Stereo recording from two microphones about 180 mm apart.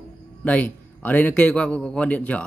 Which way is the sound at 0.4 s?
10° left (ahead or behind).